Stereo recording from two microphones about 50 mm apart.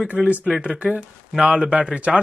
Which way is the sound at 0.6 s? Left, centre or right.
Right.